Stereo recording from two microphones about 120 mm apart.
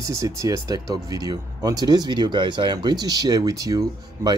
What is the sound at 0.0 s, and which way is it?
Speech, 25° right (ahead or behind).